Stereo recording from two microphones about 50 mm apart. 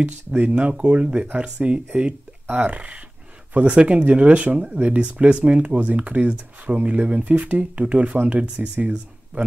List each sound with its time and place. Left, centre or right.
0.0 s speech: right